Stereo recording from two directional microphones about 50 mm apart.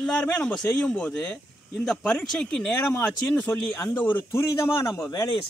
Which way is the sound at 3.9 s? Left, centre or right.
Left.